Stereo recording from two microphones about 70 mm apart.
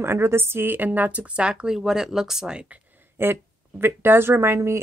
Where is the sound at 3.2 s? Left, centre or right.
Right.